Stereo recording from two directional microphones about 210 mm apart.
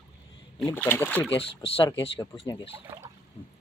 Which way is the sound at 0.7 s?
10° left (ahead or behind).